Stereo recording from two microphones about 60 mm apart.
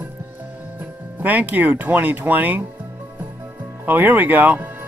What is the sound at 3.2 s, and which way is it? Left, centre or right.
Music, right.